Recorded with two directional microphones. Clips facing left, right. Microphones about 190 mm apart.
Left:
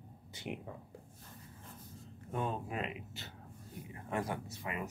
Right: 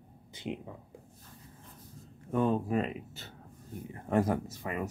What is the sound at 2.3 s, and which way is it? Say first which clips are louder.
Speech: right 9 dB; 40° right (ahead or behind).